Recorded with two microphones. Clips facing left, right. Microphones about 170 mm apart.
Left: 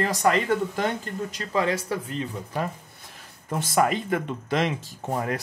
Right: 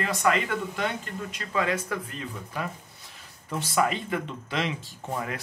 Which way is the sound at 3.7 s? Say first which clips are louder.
Left 3 dB; 45° left (ahead or behind).